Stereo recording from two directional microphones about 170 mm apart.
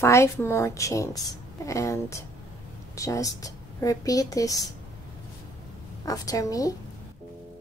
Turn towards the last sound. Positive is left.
turn(degrees=20)  # may be behind; listen again after turning